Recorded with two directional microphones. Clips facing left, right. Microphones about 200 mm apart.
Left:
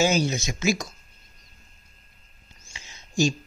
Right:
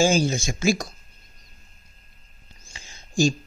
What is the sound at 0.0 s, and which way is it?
Speech, 30° right (ahead or behind).